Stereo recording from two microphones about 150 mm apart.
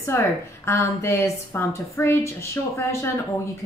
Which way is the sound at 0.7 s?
20° left (ahead or behind).